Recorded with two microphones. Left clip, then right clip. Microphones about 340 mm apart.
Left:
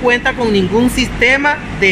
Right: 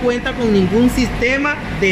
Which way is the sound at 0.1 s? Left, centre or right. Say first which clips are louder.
Left 4 dB; left.